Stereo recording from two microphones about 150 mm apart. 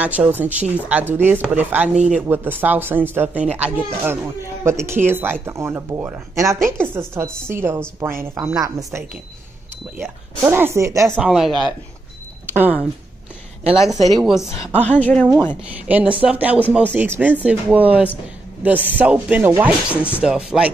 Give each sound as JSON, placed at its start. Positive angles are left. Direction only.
{"t": 0.0, "sound": "speech", "side_deg": -10}
{"t": 10.4, "sound": "speech", "side_deg": -15}
{"t": 11.1, "sound": "speech", "side_deg": 0}
{"t": 12.4, "sound": "speech", "side_deg": -10}
{"t": 13.8, "sound": "speech", "side_deg": 0}
{"t": 14.9, "sound": "speech", "side_deg": 10}
{"t": 15.7, "sound": "a man's voice", "side_deg": -10}